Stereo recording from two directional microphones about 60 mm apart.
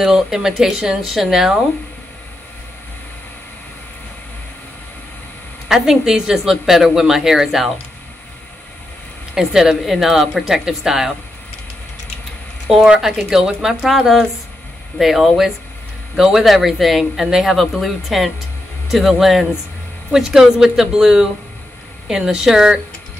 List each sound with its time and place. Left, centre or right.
0.0 s a woman's voice: centre
5.7 s a woman's voice: centre
9.3 s a woman's voice: centre
12.6 s a woman's voice: centre
15.0 s a woman's voice: centre